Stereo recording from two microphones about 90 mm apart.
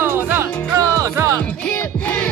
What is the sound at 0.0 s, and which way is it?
Music, 25° right (ahead or behind).